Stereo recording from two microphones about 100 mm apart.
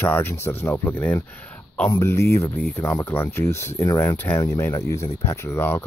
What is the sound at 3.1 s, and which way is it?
Speech, 25° left (ahead or behind).